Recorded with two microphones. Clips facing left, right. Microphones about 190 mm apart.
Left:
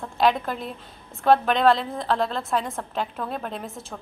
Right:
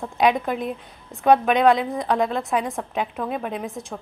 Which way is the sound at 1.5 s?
Centre (ahead or behind).